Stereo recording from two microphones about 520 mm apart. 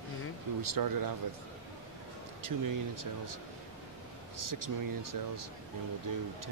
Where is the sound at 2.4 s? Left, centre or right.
Right.